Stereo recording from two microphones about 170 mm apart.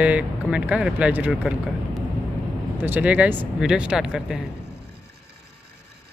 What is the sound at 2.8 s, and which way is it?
Speech, 10° right (ahead or behind).